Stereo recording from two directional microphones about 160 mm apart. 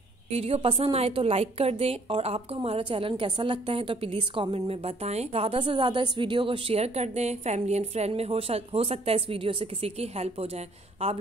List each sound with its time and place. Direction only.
0.3 s a woman's voice: 40° right (ahead or behind)